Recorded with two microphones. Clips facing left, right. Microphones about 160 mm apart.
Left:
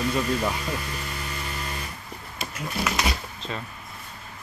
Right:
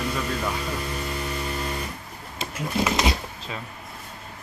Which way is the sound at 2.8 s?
25° right (ahead or behind).